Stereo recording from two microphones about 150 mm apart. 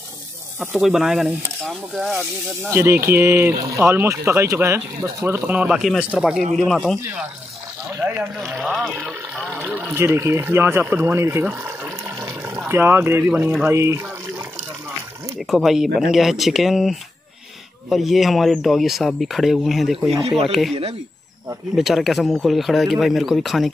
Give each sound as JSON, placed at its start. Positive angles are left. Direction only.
{"t": 0.7, "sound": "speech", "side_deg": -5}
{"t": 2.7, "sound": "speech", "side_deg": -15}
{"t": 7.0, "sound": "speech", "side_deg": -15}
{"t": 8.5, "sound": "a sound", "side_deg": -10}
{"t": 13.7, "sound": "speech", "side_deg": -20}
{"t": 15.3, "sound": "speech", "side_deg": 0}
{"t": 20.2, "sound": "speech", "side_deg": -40}
{"t": 21.7, "sound": "speech", "side_deg": 0}